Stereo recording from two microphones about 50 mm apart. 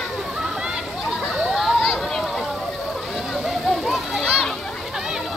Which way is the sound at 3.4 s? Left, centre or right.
Centre.